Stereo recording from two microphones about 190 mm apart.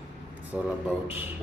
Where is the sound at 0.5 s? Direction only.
5° right (ahead or behind).